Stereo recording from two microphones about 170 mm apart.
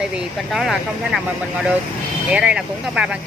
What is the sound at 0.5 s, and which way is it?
Speech, centre (ahead or behind).